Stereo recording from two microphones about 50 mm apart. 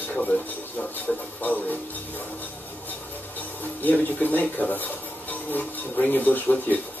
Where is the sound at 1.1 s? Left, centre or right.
Centre.